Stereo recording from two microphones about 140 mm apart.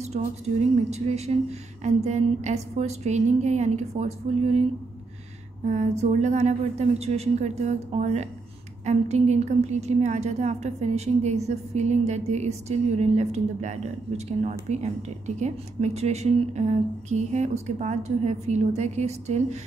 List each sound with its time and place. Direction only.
0.0 s a woman's voice: 50° right (ahead or behind)
5.7 s a woman's voice: 55° right (ahead or behind)